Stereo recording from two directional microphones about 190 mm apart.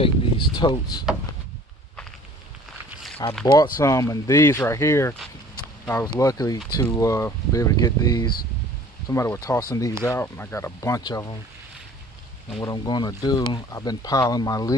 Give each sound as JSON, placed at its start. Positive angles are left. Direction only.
{"t": 0.0, "sound": "a sound", "side_deg": 25}
{"t": 2.9, "sound": "snake", "side_deg": 0}
{"t": 3.4, "sound": "speech", "side_deg": 20}
{"t": 12.6, "sound": "speech", "side_deg": 25}